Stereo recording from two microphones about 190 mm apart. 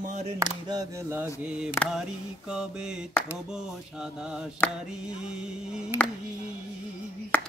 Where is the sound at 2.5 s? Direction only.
5° right (ahead or behind).